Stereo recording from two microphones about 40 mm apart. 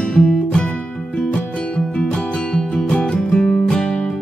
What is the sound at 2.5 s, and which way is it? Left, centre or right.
Music, left.